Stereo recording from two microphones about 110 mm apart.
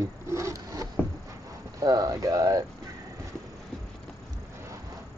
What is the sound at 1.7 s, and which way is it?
Speech, 35° right (ahead or behind).